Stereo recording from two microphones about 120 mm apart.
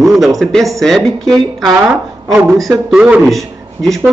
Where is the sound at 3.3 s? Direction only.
Centre (ahead or behind).